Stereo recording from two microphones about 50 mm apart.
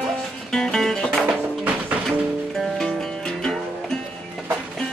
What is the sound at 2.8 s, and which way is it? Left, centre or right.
Music, centre.